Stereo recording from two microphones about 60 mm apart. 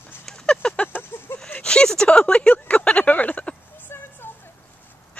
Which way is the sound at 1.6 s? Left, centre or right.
Centre.